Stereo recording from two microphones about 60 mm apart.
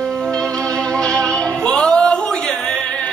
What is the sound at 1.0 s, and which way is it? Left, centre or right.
Music, centre.